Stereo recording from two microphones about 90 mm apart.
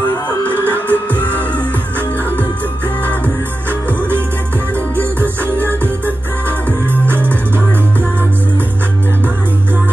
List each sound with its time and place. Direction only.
0.5 s music: 25° right (ahead or behind)
0.8 s music: 20° left (ahead or behind)